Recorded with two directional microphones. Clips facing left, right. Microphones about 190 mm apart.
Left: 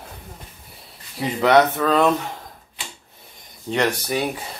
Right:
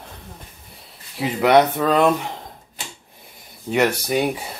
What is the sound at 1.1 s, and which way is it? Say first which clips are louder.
Speech: right 1 dB; 5° right (ahead or behind).